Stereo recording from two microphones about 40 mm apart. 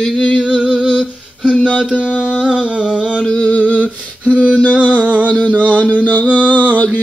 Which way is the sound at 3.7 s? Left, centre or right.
Left.